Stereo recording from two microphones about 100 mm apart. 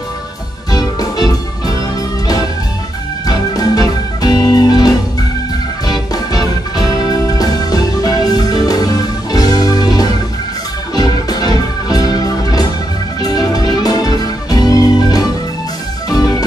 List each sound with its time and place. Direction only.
0.7 s music: 40° left (ahead or behind)
3.3 s music: 40° left (ahead or behind)